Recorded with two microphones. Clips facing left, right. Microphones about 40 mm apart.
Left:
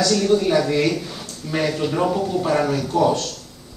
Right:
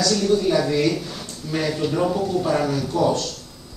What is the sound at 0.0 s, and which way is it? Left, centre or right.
Speech, left.